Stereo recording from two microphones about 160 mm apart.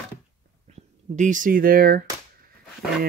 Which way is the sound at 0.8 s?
50° right (ahead or behind).